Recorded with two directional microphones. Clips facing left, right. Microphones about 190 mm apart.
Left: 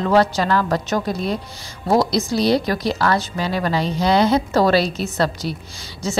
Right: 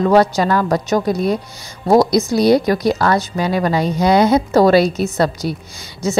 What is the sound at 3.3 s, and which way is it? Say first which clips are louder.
Speech: right 5 dB; 25° right (ahead or behind).